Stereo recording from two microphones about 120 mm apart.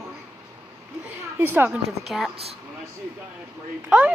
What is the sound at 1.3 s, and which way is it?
Speech, 15° right (ahead or behind).